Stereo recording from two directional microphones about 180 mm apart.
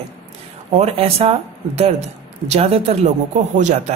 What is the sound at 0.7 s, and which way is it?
A man's voice, 35° right (ahead or behind).